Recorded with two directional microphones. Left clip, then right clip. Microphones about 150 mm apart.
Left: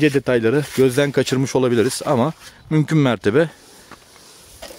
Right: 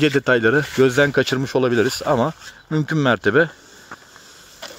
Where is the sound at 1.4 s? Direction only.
45° left (ahead or behind).